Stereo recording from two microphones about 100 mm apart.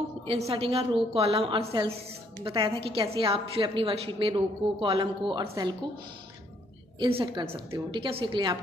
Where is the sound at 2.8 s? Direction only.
75° right (ahead or behind).